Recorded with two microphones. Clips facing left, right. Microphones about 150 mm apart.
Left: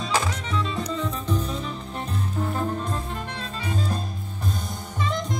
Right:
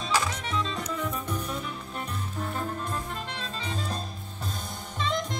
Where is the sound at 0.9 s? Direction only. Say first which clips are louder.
Left 5 dB; 10° right (ahead or behind).